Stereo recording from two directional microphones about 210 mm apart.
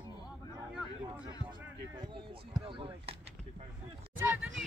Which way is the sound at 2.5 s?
25° right (ahead or behind).